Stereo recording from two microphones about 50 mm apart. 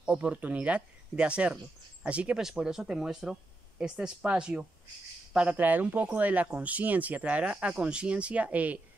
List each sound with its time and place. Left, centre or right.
0.0 s speech: right
2.6 s speech: centre
5.6 s speech: right